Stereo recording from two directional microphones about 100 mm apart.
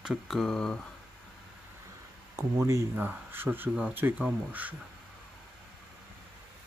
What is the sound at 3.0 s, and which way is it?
Speech, 20° right (ahead or behind).